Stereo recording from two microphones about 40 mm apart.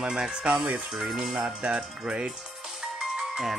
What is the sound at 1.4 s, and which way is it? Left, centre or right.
Speech, right.